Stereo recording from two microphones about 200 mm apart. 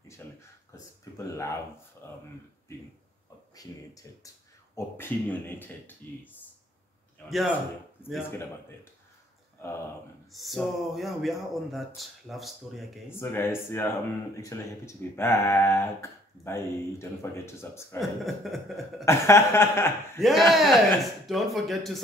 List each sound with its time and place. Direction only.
0.2 s a sound: 10° left (ahead or behind)
1.1 s speech: 15° left (ahead or behind)
3.5 s speech: 15° left (ahead or behind); by 7.5 s centre (ahead or behind)
8.2 s speech: 10° left (ahead or behind)
9.6 s speech: 10° left (ahead or behind)
10.3 s speech: centre (ahead or behind)
13.2 s speech: 10° left (ahead or behind)
18.2 s speech: centre (ahead or behind)
19.0 s speech: 15° left (ahead or behind)
20.2 s speech: centre (ahead or behind)